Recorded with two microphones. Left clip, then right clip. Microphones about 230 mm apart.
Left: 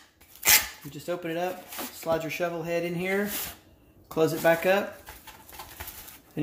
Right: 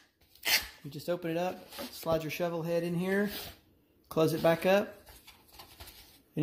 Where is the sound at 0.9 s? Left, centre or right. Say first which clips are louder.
Left 1 dB; right.